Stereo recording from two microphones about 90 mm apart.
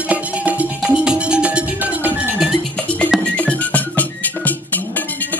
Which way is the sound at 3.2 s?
15° left (ahead or behind).